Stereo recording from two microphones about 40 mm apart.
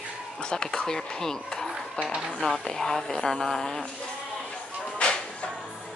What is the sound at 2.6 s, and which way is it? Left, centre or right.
Speech, centre.